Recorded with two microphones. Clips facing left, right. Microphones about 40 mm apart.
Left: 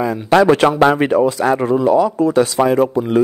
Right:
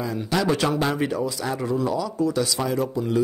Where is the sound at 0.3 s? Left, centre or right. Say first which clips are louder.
Left 11 dB; left.